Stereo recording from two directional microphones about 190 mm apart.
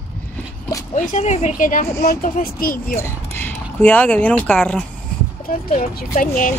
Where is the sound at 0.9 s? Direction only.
40° left (ahead or behind).